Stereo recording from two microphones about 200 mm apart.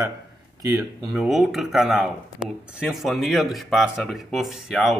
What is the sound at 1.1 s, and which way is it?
Speech, centre (ahead or behind).